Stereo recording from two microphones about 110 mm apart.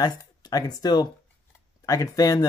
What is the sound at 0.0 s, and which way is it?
Speech, 35° left (ahead or behind).